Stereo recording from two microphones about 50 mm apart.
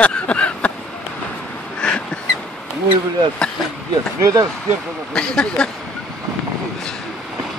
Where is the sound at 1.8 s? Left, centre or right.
Centre.